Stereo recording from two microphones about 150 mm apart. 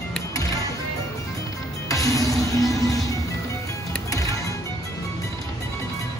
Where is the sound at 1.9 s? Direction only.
20° left (ahead or behind).